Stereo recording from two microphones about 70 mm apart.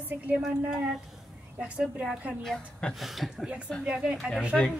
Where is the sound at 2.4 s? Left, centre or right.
Centre.